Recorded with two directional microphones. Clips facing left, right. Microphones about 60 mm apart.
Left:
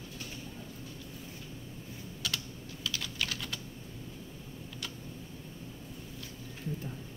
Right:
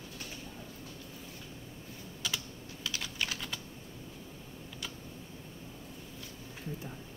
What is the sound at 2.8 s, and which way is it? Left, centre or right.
Typing, right.